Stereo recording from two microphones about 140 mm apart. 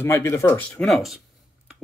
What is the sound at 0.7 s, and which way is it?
Speech, centre (ahead or behind).